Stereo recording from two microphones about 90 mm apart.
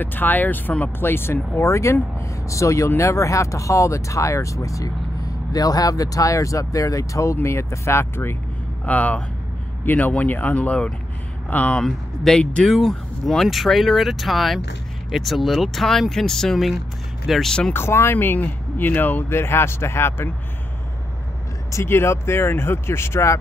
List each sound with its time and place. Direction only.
0.0 s speech: 20° left (ahead or behind)
8.8 s speech: 15° left (ahead or behind)
17.7 s speech: 25° left (ahead or behind)
21.7 s speech: 30° left (ahead or behind)